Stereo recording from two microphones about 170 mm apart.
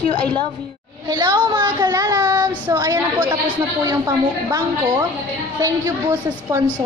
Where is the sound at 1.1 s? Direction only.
25° right (ahead or behind).